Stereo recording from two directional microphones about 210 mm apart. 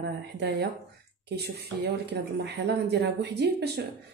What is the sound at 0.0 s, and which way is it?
Speech, 50° right (ahead or behind).